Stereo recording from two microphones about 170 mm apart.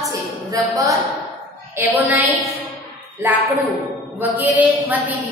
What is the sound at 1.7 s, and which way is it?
A woman's voice, 10° right (ahead or behind).